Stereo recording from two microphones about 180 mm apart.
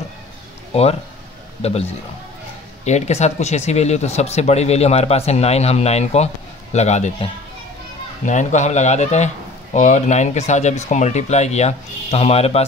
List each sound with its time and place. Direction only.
1.6 s speech: 35° left (ahead or behind)
8.3 s speech: 40° left (ahead or behind)